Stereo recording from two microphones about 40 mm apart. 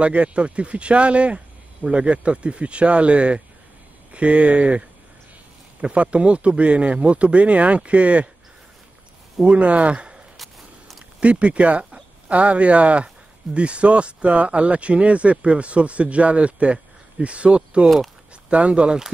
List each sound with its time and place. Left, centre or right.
0.0 s speech: right
9.4 s speech: right
10.3 s a sound: centre
11.1 s speech: right
17.8 s speech: centre
18.5 s speech: right